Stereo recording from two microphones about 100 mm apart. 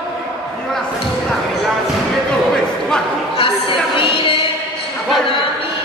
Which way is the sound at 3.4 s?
65° left (ahead or behind).